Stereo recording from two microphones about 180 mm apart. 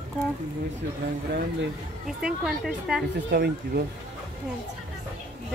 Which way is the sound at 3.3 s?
60° right (ahead or behind).